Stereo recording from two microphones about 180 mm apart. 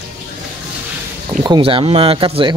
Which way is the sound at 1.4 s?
25° right (ahead or behind).